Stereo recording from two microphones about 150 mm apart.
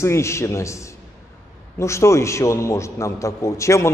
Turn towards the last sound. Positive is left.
turn(degrees=20)  # may be behind; listen again after turning